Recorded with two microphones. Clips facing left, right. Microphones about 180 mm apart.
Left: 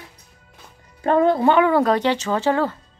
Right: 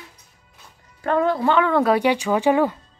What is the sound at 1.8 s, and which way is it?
Speech, 10° right (ahead or behind).